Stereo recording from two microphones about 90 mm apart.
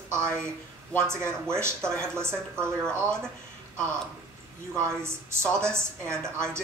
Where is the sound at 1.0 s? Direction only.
30° right (ahead or behind).